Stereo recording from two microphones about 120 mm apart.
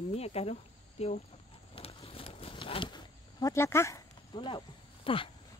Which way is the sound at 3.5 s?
20° left (ahead or behind).